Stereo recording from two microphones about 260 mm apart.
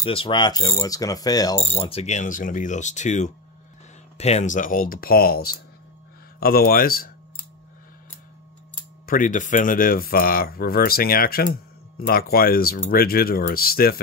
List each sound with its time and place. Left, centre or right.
0.0 s mechanisms: left
4.2 s speech: left
9.0 s speech: left